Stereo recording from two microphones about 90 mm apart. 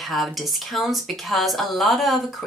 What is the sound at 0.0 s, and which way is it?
Speech, centre (ahead or behind).